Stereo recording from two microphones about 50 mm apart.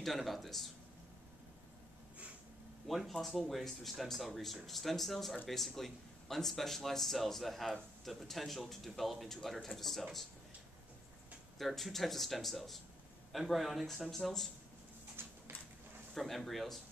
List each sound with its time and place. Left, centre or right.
0.0 s a man's voice: centre
2.9 s a man's voice: centre
11.5 s a man's voice: centre
15.2 s a sound: right
16.2 s a man's voice: centre